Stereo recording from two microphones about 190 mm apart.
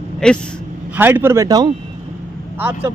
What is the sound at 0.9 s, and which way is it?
Speech, 10° right (ahead or behind).